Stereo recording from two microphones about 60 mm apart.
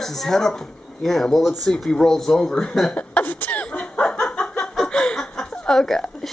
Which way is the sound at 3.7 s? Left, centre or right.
Centre.